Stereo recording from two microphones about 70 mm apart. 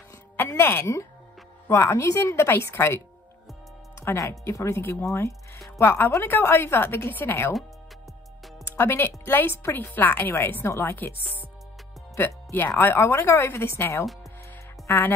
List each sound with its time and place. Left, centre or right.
0.6 s a woman's voice: left
4.3 s a woman's voice: left
8.6 s a woman's voice: left
12.5 s a woman's voice: left